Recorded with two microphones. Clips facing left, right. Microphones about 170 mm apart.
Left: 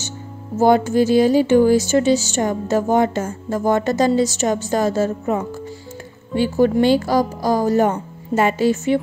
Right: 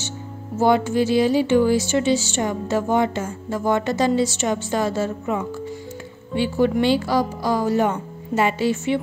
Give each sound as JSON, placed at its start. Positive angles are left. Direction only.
{"t": 0.6, "sound": "speech", "side_deg": 45}